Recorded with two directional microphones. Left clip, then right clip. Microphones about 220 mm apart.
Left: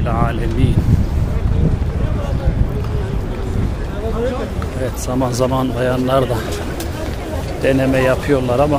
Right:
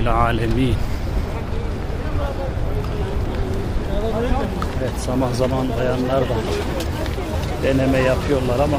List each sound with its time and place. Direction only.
0.0 s speech: 5° right (ahead or behind)
5.2 s a man's voice: 20° left (ahead or behind)
7.6 s a man's voice: 15° left (ahead or behind)